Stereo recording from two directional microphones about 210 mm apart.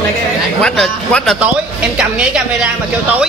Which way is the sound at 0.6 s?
5° left (ahead or behind).